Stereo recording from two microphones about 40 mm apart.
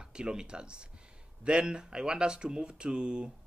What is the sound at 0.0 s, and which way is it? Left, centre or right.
Speech, right.